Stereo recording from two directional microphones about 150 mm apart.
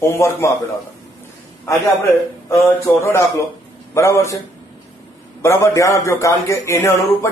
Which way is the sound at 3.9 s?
20° left (ahead or behind).